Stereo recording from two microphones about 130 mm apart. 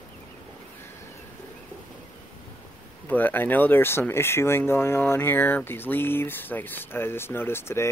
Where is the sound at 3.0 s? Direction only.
15° left (ahead or behind).